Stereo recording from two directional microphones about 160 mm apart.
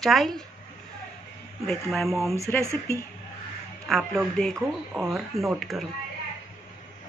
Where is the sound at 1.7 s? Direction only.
Centre (ahead or behind).